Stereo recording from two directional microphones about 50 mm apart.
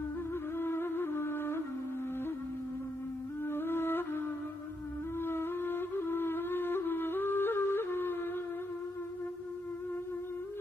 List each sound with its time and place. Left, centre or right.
0.6 s music: left
3.4 s music: left
5.2 s flute: left